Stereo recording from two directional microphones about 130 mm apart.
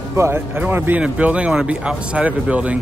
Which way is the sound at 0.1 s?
20° right (ahead or behind).